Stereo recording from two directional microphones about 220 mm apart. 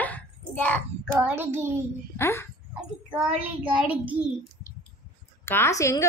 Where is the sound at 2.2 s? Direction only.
10° left (ahead or behind).